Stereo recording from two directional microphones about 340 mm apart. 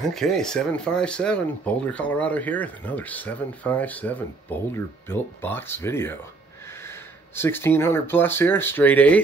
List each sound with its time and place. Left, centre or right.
0.1 s speech: centre
7.3 s speech: centre